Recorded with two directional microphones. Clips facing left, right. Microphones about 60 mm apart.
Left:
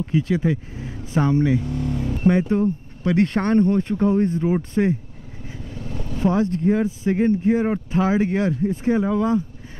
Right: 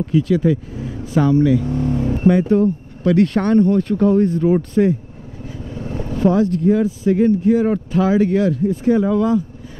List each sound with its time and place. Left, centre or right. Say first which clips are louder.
0.0 s speech: right 5 dB; left
1.6 s vehicle: right 6 dB; right
3.0 s speech: right 5 dB; left
5.8 s vehicle: right 6 dB; right
6.2 s speech: right 4 dB; left